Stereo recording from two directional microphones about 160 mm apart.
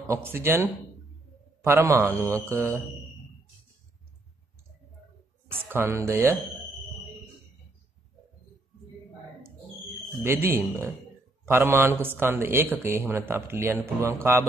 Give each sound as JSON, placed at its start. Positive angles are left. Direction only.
{"t": 0.0, "sound": "a man's voice", "side_deg": -15}
{"t": 5.7, "sound": "a man's voice", "side_deg": -15}
{"t": 10.2, "sound": "a man's voice", "side_deg": -15}